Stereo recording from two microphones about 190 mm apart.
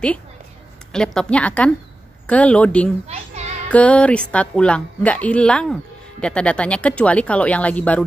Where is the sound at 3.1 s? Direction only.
35° right (ahead or behind).